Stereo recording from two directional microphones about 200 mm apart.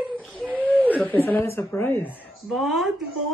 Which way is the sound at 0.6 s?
10° left (ahead or behind).